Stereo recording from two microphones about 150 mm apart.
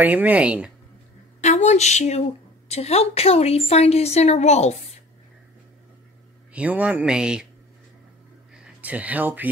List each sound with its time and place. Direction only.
0.0 s speech: 10° right (ahead or behind)
1.4 s a woman's voice: 50° left (ahead or behind)
6.5 s speech: 10° right (ahead or behind)
8.8 s speech: 10° right (ahead or behind)